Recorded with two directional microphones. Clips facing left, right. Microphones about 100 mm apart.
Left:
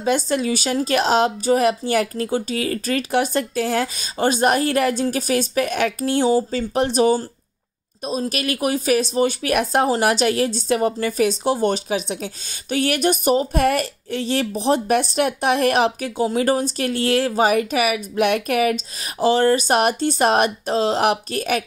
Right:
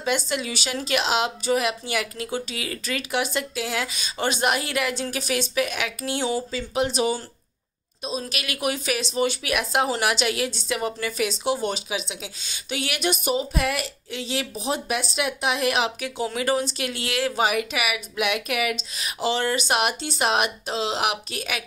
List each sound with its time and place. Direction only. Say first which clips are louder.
0.0 s a woman's voice: left 6 dB; 40° left (ahead or behind)